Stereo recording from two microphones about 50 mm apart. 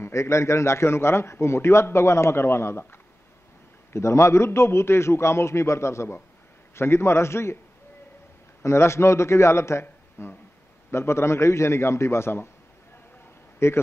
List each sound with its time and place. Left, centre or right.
0.0 s a man's voice: left
3.9 s a man's voice: left
8.6 s a man's voice: left
13.6 s a man's voice: left